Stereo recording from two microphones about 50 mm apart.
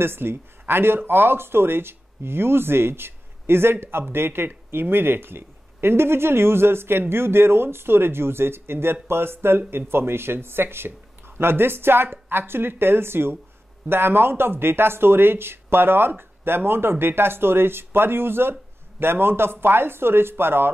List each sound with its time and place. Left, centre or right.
0.0 s speech: right